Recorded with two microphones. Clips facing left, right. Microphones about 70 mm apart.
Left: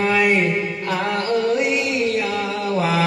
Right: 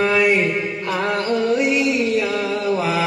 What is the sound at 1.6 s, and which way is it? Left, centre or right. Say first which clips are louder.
Music: right 2 dB; left.